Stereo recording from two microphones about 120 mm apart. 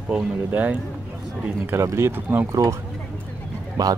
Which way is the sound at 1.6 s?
25° right (ahead or behind).